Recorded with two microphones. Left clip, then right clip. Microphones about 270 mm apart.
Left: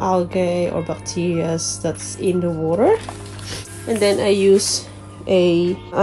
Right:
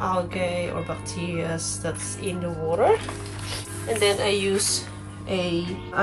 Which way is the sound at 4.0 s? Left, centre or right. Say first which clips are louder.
Left 7 dB; centre.